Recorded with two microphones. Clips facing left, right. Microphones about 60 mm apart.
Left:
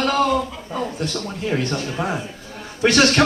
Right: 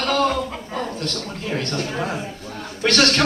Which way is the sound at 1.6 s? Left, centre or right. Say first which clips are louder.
Left 1 dB; centre.